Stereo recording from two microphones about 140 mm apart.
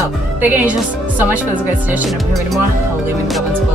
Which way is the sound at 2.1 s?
Centre (ahead or behind).